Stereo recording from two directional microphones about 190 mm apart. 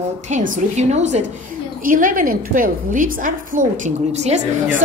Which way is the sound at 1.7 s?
45° right (ahead or behind).